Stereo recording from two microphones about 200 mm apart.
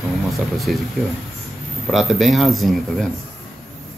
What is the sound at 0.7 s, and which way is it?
Speech, centre (ahead or behind).